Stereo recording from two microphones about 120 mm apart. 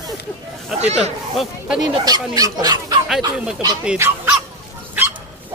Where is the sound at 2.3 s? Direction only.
35° right (ahead or behind).